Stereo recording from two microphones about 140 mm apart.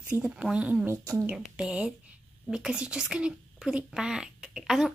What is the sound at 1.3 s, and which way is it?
Speech, 5° right (ahead or behind).